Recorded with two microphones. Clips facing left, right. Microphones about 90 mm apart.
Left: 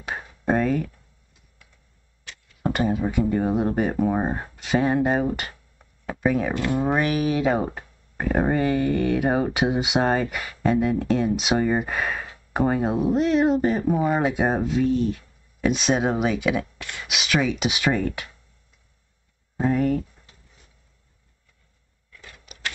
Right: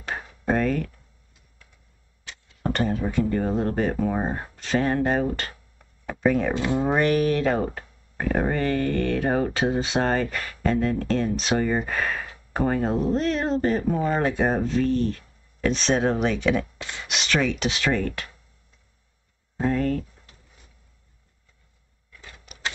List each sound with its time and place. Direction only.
0.0 s a sound: 10° left (ahead or behind)
2.2 s a sound: 20° right (ahead or behind)
2.6 s speech: 10° left (ahead or behind)
6.5 s speech: 20° right (ahead or behind)
7.0 s speech: 5° left (ahead or behind)
19.6 s speech: 10° left (ahead or behind)